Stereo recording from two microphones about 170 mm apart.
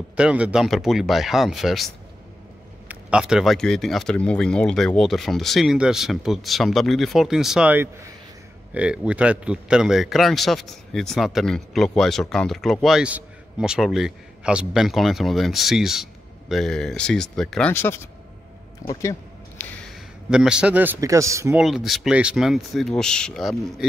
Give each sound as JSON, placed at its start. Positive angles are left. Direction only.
{"t": 0.1, "sound": "speech", "side_deg": -5}
{"t": 2.9, "sound": "speech", "side_deg": -5}
{"t": 19.6, "sound": "a sound", "side_deg": 5}
{"t": 20.2, "sound": "a man's voice", "side_deg": -5}
{"t": 21.5, "sound": "speech", "side_deg": 0}